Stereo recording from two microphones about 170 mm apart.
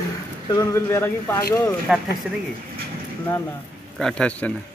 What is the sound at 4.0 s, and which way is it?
Speech, 5° left (ahead or behind).